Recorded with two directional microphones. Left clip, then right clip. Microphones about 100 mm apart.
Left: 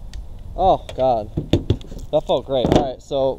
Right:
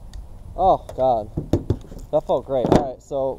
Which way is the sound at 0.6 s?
15° left (ahead or behind).